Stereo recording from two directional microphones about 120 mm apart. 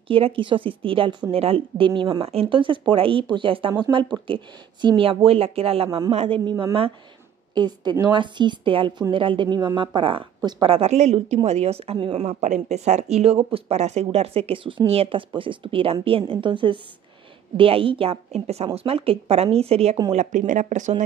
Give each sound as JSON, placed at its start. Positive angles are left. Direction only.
{"t": 0.1, "sound": "speech", "side_deg": -45}
{"t": 7.5, "sound": "speech", "side_deg": -35}
{"t": 10.8, "sound": "speech", "side_deg": -65}
{"t": 20.1, "sound": "speech", "side_deg": -85}